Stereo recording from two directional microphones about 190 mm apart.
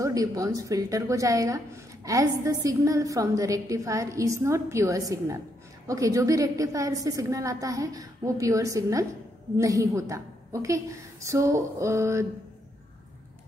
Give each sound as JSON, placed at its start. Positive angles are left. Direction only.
{"t": 0.0, "sound": "a woman's voice", "side_deg": -20}